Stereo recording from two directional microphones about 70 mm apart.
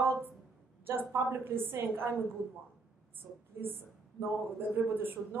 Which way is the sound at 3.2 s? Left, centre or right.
Right.